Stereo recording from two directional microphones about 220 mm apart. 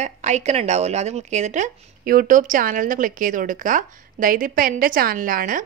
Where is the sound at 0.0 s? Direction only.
30° right (ahead or behind).